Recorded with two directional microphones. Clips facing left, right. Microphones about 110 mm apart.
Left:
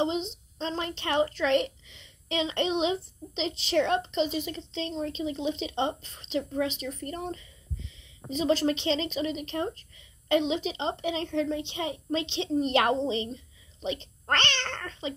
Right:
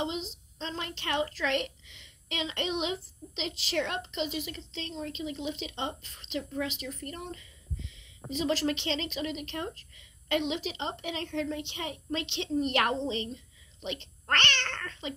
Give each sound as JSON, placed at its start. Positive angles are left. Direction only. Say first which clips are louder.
{"t": 0.0, "sound": "a woman's voice", "louder": "left 6 dB", "side_deg": 25}